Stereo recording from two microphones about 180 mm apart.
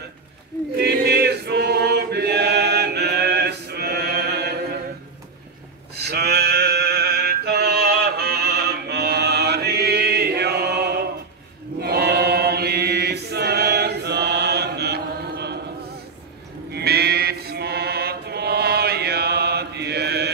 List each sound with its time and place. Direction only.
0.7 s chant: 65° right (ahead or behind)
6.0 s a sound: 65° right (ahead or behind)
11.8 s choir: 65° right (ahead or behind)
16.7 s chant: 60° right (ahead or behind)